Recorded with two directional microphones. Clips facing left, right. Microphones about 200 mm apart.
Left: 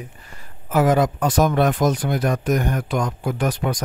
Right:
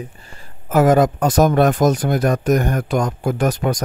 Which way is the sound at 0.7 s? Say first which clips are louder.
Right 4 dB; 45° right (ahead or behind).